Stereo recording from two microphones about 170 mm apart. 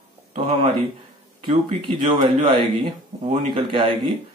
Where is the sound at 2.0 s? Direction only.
30° right (ahead or behind).